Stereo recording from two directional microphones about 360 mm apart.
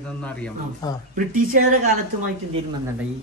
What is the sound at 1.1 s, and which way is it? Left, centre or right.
Speech, right.